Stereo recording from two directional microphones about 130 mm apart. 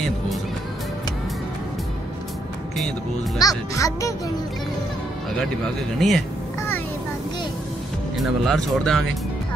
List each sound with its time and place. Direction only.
3.3 s speech: 25° left (ahead or behind)
5.9 s speech: centre (ahead or behind)
8.2 s speech: centre (ahead or behind)